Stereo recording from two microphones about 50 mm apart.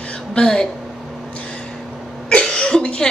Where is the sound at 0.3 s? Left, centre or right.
Centre.